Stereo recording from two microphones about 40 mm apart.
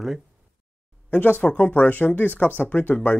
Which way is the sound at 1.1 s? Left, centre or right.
Left.